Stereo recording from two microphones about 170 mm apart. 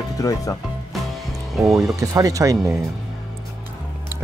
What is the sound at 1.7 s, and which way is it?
Speech, 20° right (ahead or behind).